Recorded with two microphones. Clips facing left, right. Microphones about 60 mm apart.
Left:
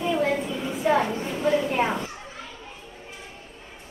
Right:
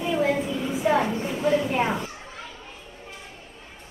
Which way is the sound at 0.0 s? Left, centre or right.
Centre.